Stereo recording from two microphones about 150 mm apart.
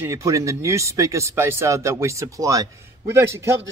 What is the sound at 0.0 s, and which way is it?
Speech, 20° right (ahead or behind).